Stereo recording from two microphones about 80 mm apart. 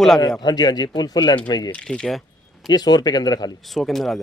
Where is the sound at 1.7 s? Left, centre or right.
Centre.